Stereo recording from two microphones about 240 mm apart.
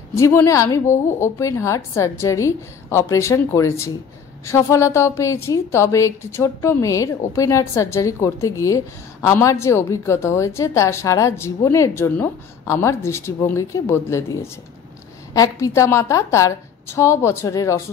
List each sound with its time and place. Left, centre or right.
0.1 s a woman's voice: centre